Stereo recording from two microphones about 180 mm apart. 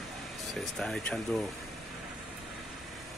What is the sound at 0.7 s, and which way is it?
Speech, 5° left (ahead or behind).